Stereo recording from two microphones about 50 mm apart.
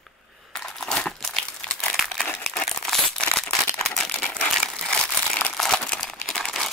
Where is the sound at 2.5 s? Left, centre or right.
Centre.